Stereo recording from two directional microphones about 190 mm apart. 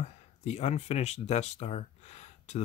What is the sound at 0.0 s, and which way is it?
Speech, 35° left (ahead or behind).